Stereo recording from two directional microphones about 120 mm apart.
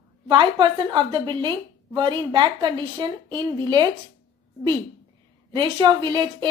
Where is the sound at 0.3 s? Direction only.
40° right (ahead or behind).